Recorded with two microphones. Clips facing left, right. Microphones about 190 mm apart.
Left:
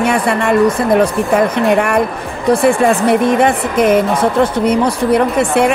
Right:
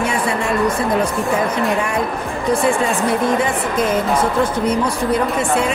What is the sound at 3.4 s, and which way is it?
A woman's voice, 70° left (ahead or behind).